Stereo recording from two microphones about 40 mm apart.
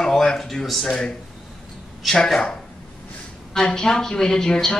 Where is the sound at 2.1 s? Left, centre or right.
Centre.